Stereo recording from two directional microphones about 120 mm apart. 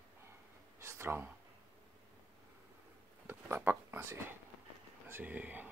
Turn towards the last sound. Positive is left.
turn(degrees=-15)  # may be behind; listen again after turning